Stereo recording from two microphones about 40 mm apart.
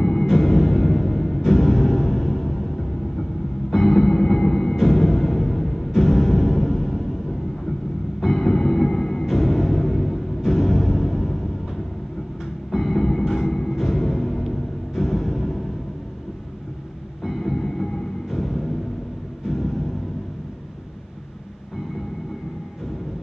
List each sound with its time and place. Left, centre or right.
0.0 s music: centre
0.3 s music: centre
3.7 s music: centre
9.2 s music: centre
14.5 s vehicle: centre
17.2 s music: centre
19.4 s a sound: centre